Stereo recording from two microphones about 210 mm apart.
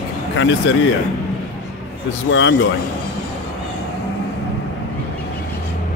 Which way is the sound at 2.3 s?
60° left (ahead or behind).